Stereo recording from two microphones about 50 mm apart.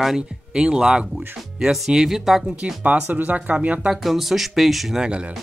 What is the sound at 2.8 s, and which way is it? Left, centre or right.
Speech, right.